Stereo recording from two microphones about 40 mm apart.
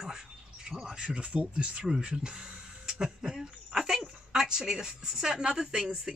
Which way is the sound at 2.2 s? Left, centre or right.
Right.